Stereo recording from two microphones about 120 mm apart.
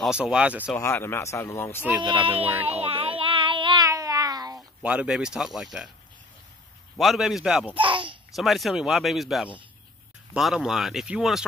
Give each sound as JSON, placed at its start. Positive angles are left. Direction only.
{"t": 0.0, "sound": "speech", "side_deg": -5}
{"t": 0.7, "sound": "speech", "side_deg": 20}
{"t": 2.0, "sound": "speech", "side_deg": -40}
{"t": 2.6, "sound": "child singing", "side_deg": -50}
{"t": 3.8, "sound": "cat", "side_deg": -30}
{"t": 4.6, "sound": "speech", "side_deg": -10}
{"t": 7.0, "sound": "speech", "side_deg": 0}
{"t": 7.7, "sound": "babbling", "side_deg": -45}
{"t": 8.4, "sound": "speech", "side_deg": 0}